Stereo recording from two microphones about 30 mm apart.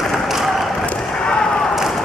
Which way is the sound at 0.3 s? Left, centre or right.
Centre.